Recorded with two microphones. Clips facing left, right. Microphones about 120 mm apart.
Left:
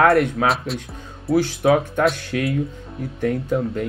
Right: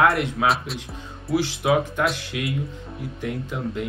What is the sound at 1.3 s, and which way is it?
Speech, 45° left (ahead or behind).